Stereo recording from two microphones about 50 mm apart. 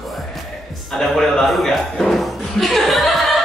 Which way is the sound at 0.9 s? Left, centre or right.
Centre.